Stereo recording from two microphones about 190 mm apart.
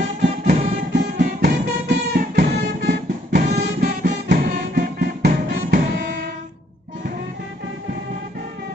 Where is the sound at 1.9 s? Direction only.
55° right (ahead or behind).